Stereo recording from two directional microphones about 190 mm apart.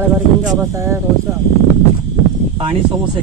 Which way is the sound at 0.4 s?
15° right (ahead or behind).